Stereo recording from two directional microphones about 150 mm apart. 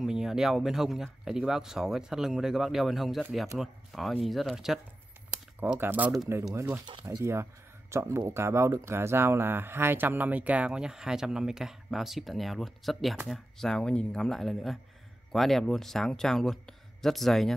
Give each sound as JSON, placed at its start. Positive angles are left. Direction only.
{"t": 0.0, "sound": "speech", "side_deg": -5}
{"t": 5.6, "sound": "speech", "side_deg": -15}
{"t": 6.9, "sound": "speech", "side_deg": -30}
{"t": 7.9, "sound": "speech", "side_deg": -15}